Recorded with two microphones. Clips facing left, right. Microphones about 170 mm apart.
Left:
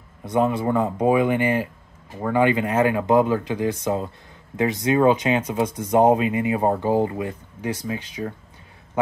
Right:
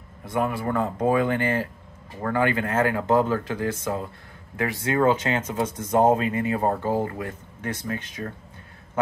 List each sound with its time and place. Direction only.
0.2 s speech: 20° left (ahead or behind)